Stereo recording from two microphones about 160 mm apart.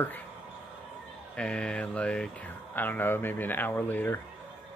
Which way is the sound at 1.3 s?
5° left (ahead or behind).